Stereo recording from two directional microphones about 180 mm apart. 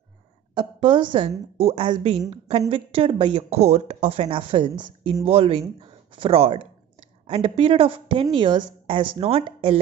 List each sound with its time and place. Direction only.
0.6 s a woman's voice: 25° right (ahead or behind)